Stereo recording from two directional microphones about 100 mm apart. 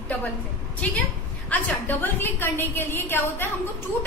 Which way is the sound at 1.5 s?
15° left (ahead or behind).